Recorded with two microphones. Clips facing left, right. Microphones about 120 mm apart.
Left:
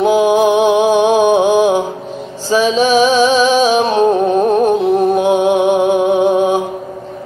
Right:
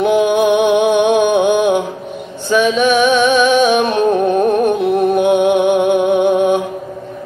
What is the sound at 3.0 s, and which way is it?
Music, 55° right (ahead or behind).